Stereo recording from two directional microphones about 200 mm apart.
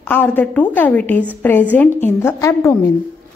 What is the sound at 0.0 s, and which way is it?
Speech, 10° left (ahead or behind).